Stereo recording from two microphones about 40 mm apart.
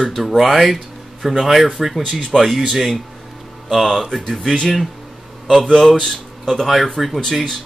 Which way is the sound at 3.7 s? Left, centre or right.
Centre.